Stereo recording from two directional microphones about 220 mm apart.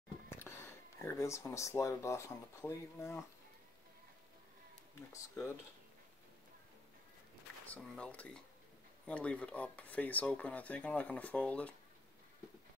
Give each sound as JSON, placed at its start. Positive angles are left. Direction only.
{"t": 0.3, "sound": "speech", "side_deg": 10}
{"t": 5.1, "sound": "speech", "side_deg": 15}
{"t": 7.6, "sound": "speech", "side_deg": 5}